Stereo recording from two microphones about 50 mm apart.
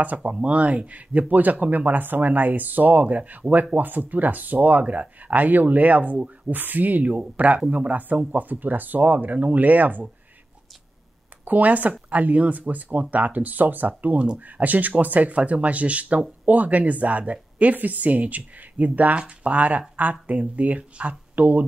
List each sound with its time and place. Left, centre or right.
0.0 s speech: right
11.4 s speech: right